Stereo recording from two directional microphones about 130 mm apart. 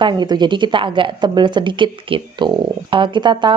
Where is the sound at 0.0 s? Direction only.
35° right (ahead or behind).